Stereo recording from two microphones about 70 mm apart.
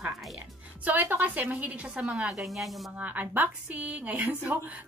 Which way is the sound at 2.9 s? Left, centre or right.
Right.